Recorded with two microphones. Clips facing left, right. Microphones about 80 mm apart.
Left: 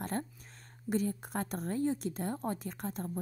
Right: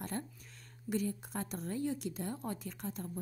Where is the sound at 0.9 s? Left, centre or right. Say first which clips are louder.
Left 3 dB; left.